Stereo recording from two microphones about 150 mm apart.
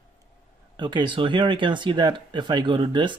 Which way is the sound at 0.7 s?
30° right (ahead or behind).